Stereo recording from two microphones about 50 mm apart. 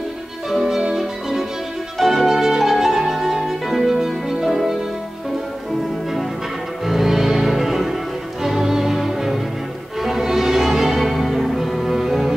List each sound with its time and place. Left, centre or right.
0.5 s music: centre
6.9 s music: centre